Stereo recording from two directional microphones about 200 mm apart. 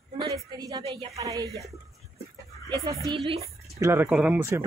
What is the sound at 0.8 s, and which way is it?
Speech, 30° right (ahead or behind).